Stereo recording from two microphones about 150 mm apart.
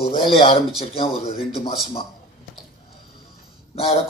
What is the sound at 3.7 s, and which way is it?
Speech, 40° left (ahead or behind).